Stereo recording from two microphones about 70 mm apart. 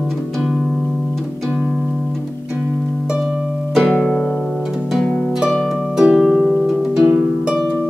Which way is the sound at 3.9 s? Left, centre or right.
Centre.